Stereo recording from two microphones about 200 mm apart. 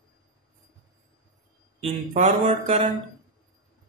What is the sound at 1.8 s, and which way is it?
Speech, 35° right (ahead or behind).